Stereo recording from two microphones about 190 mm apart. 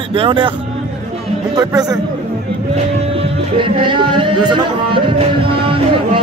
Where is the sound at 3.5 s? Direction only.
25° right (ahead or behind).